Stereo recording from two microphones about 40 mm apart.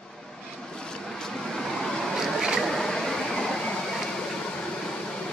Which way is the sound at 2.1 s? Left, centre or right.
Centre.